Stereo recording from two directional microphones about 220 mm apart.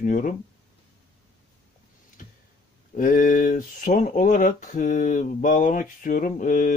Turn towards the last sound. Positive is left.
turn(degrees=35)  # may be behind; listen again after turning